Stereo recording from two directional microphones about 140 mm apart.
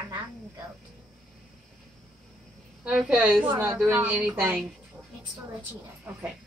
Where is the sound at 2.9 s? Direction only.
10° right (ahead or behind).